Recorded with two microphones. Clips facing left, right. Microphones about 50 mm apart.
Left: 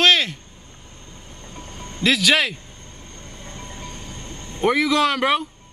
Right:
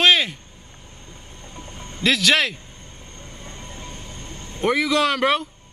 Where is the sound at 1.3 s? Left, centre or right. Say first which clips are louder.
Left 1 dB; centre.